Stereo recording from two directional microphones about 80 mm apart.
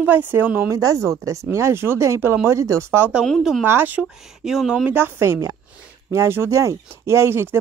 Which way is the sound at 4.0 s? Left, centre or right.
Centre.